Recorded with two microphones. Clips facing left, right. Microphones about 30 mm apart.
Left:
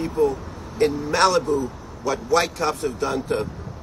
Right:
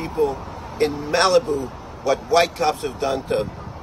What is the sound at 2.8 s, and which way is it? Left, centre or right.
Speech, right.